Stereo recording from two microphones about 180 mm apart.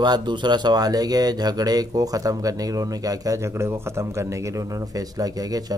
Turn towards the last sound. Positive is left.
turn(degrees=-20)  # may be behind; listen again after turning